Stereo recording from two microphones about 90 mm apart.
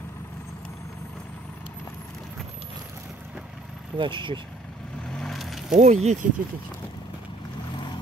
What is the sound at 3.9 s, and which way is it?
Speech, 65° right (ahead or behind).